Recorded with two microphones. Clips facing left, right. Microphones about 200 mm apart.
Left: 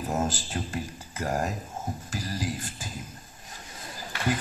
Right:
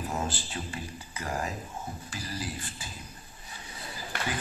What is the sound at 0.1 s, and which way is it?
A man's voice, 45° left (ahead or behind).